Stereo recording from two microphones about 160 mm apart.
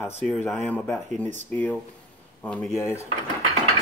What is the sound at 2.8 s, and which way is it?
Speech, 15° left (ahead or behind).